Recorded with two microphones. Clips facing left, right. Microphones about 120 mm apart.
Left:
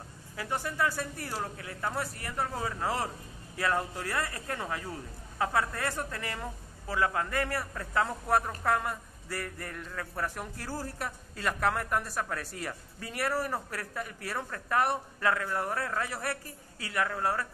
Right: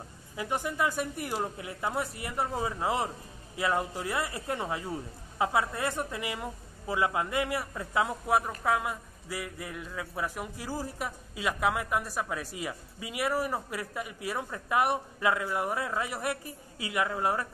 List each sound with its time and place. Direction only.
0.4 s a man's voice: 15° right (ahead or behind)